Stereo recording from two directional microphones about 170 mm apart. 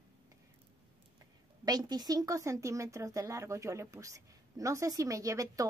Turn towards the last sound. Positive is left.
turn(degrees=-20)  # may be behind; listen again after turning